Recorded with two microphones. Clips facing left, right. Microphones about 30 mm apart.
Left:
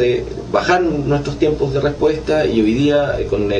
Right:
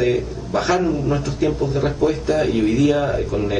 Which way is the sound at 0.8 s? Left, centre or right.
Centre.